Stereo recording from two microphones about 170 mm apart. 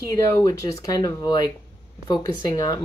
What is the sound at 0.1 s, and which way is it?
Speech, 20° left (ahead or behind).